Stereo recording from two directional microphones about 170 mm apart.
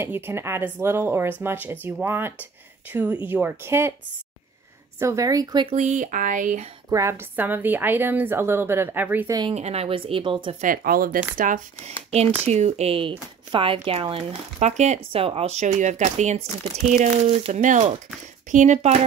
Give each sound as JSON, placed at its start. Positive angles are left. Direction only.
{"t": 0.0, "sound": "a woman's voice", "side_deg": -15}
{"t": 4.9, "sound": "speech", "side_deg": -20}
{"t": 5.8, "sound": "speech", "side_deg": -45}
{"t": 6.9, "sound": "a woman's voice", "side_deg": -15}
{"t": 9.5, "sound": "speech", "side_deg": -40}
{"t": 10.6, "sound": "speech", "side_deg": -55}